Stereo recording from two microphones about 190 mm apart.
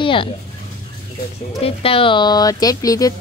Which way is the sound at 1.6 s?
30° left (ahead or behind).